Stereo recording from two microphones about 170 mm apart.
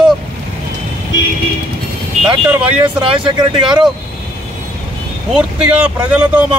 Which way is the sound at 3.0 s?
30° right (ahead or behind).